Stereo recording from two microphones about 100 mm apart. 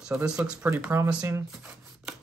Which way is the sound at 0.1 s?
10° right (ahead or behind).